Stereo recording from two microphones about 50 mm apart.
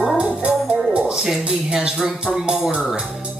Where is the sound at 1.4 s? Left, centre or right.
Centre.